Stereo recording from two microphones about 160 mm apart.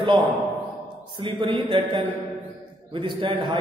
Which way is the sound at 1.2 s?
35° right (ahead or behind).